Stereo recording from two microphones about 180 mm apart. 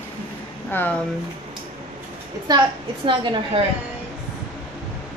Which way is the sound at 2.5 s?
20° right (ahead or behind).